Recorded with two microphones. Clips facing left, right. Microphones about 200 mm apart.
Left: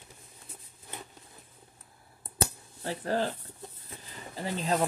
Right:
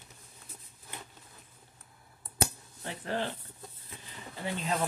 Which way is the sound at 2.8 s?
40° left (ahead or behind).